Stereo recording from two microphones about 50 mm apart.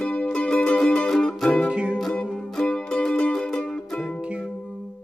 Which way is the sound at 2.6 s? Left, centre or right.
Centre.